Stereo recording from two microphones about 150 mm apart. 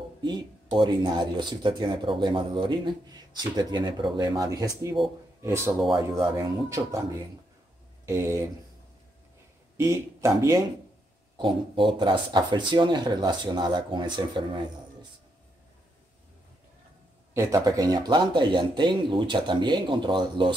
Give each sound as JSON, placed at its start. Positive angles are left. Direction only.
{"t": 0.2, "sound": "speech", "side_deg": -30}
{"t": 9.8, "sound": "speech", "side_deg": -20}
{"t": 11.3, "sound": "speech", "side_deg": -35}
{"t": 17.3, "sound": "speech", "side_deg": -20}